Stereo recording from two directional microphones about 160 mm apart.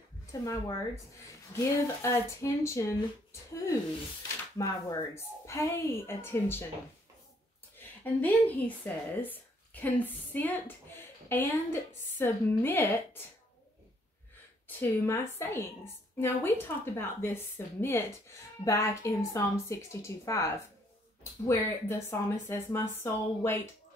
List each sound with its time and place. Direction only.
0.3 s a woman's voice: 20° left (ahead or behind)
4.6 s speech: 20° left (ahead or behind)
8.0 s speech: 10° left (ahead or behind)
14.8 s a woman's voice: 15° left (ahead or behind)